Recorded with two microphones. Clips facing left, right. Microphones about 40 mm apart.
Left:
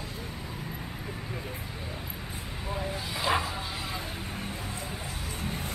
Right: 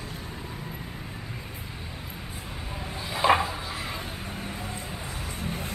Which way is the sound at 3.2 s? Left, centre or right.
Right.